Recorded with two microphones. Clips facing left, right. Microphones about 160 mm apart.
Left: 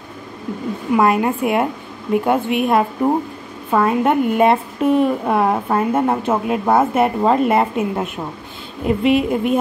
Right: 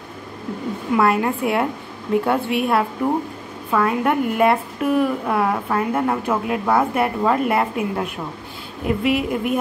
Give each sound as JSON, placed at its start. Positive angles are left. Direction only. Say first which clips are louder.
{"t": 0.9, "sound": "a woman's voice", "louder": "left 2 dB", "side_deg": 20}